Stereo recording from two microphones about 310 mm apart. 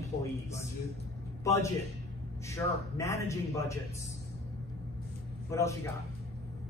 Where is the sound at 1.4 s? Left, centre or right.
Centre.